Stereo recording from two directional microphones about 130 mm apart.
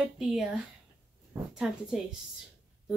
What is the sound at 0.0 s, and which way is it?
Speech, 5° right (ahead or behind).